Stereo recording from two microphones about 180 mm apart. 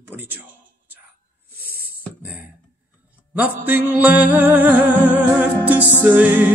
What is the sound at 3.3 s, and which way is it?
Music, 10° right (ahead or behind).